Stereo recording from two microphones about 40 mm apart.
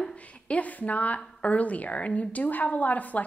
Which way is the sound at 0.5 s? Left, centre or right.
Left.